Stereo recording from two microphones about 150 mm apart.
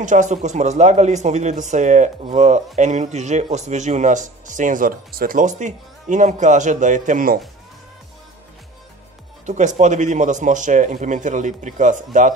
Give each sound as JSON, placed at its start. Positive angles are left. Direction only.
{"t": 0.0, "sound": "a man's voice", "side_deg": -55}
{"t": 9.5, "sound": "speech", "side_deg": -55}